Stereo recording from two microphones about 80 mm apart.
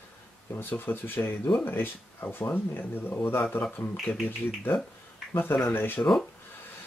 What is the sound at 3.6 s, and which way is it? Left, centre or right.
Speech, centre.